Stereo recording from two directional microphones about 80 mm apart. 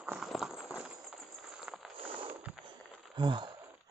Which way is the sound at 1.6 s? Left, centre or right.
Centre.